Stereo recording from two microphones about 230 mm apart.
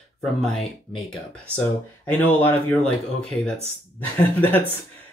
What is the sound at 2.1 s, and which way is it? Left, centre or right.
Speech, centre.